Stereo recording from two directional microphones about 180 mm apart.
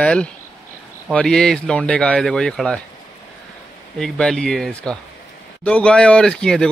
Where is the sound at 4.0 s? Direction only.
5° left (ahead or behind).